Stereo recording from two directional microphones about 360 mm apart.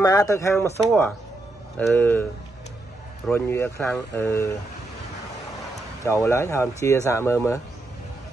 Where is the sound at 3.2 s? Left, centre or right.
Centre.